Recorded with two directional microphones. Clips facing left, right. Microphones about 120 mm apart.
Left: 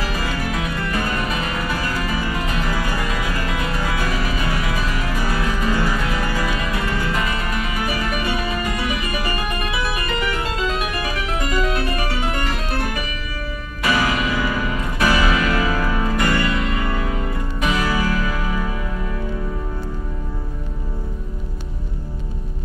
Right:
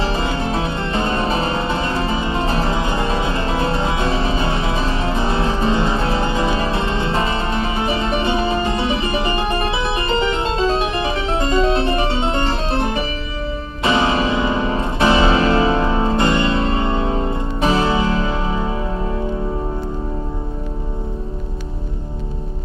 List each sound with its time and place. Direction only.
0.0 s music: 25° right (ahead or behind)